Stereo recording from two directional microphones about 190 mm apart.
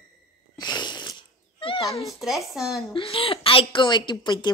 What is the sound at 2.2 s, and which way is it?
Speech, centre (ahead or behind).